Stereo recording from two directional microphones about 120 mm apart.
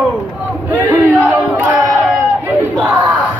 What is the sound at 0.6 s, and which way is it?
Battle cry, 15° right (ahead or behind).